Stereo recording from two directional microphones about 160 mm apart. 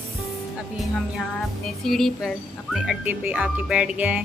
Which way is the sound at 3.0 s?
10° right (ahead or behind).